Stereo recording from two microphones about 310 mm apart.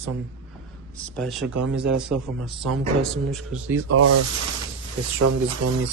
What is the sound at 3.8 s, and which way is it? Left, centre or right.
Speech, right.